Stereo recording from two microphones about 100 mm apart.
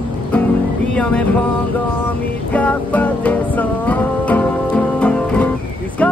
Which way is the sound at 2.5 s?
15° left (ahead or behind).